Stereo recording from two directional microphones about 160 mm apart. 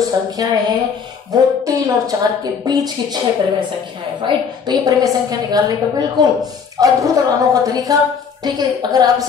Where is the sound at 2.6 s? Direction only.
25° right (ahead or behind).